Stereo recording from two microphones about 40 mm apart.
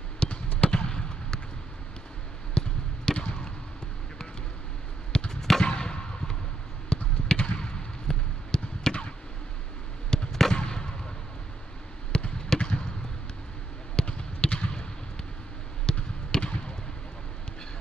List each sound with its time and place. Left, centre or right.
0.2 s basketball bounce: left
0.7 s fireworks: left
2.5 s basketball bounce: left
5.1 s a sound: left
5.4 s a sound: centre
5.7 s a sound: left
6.9 s basketball bounce: left
10.1 s fireworks: centre
12.1 s basketball bounce: left
13.9 s basketball bounce: left
15.9 s basketball bounce: left